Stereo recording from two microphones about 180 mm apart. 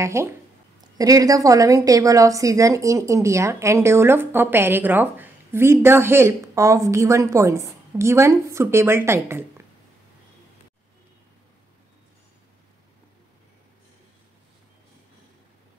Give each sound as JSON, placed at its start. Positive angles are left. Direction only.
{"t": 0.0, "sound": "speech", "side_deg": -15}